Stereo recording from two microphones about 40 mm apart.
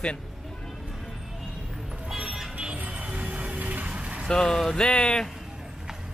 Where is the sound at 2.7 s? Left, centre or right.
Right.